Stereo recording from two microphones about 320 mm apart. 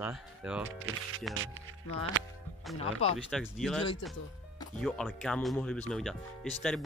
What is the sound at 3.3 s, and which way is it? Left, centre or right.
Speech, centre.